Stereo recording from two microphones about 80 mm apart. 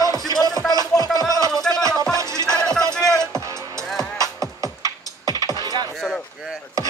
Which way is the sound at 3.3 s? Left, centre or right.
Right.